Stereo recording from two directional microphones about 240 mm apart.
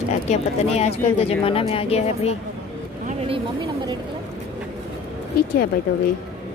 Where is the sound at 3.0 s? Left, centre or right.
Right.